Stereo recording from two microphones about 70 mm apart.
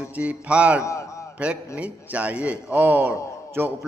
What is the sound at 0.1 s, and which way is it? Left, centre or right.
A man's voice, centre.